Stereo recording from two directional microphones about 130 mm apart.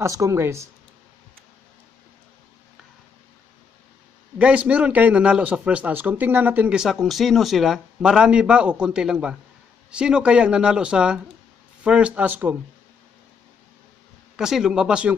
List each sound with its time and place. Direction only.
0.0 s speech: 25° right (ahead or behind)
4.4 s a man's voice: 10° right (ahead or behind)
14.3 s speech: 5° right (ahead or behind)